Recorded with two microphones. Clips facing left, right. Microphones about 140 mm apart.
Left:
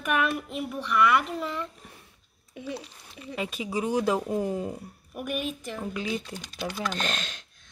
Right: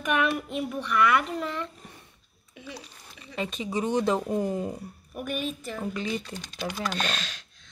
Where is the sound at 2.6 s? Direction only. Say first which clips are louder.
Left 6 dB; 50° left (ahead or behind).